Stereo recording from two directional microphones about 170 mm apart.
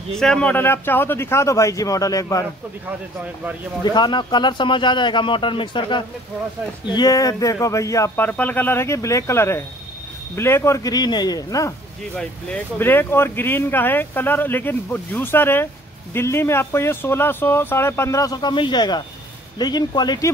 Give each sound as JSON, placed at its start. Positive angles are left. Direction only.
{"t": 0.2, "sound": "speech", "side_deg": 5}
{"t": 3.8, "sound": "speech", "side_deg": 25}
{"t": 12.2, "sound": "speech", "side_deg": 5}